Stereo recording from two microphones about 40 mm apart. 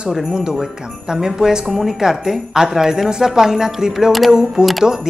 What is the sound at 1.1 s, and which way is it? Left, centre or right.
Speech, centre.